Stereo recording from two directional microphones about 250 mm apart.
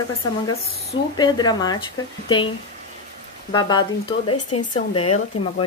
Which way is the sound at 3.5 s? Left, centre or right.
Centre.